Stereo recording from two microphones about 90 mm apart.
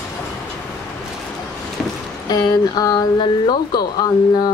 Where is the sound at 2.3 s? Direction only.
45° left (ahead or behind).